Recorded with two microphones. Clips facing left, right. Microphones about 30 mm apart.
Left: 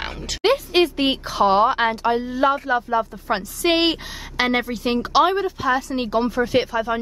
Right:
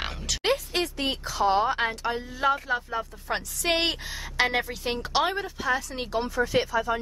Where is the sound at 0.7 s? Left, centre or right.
Left.